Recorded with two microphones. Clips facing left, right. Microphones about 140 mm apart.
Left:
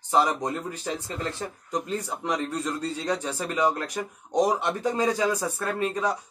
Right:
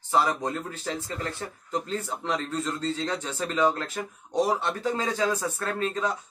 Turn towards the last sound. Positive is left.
turn(degrees=10)  # may be behind; listen again after turning